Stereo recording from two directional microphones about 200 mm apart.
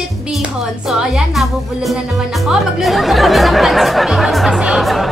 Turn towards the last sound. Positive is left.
turn(degrees=0)  # may be behind; listen again after turning